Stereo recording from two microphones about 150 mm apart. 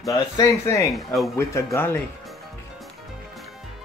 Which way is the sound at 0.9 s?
Centre (ahead or behind).